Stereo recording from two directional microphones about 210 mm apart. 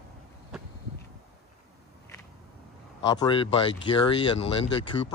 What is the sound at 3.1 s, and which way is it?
Speech, 20° left (ahead or behind).